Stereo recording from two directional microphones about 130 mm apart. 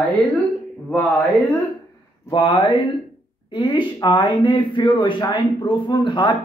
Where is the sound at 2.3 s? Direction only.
40° left (ahead or behind).